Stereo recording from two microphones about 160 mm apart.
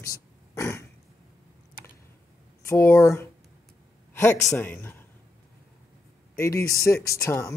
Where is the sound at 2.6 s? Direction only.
15° left (ahead or behind).